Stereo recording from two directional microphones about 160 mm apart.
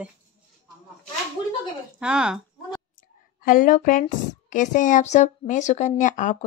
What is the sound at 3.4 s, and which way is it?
A woman's voice, 60° left (ahead or behind).